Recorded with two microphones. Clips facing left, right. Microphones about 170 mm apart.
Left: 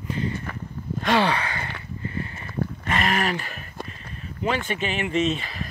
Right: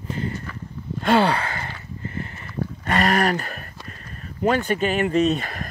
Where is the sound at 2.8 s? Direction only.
40° right (ahead or behind).